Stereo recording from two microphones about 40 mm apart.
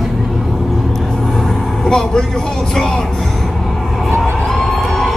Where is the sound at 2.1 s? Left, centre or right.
Centre.